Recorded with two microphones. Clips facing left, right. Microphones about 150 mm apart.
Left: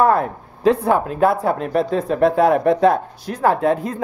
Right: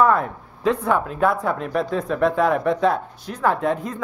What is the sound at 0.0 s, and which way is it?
Speech, 35° left (ahead or behind).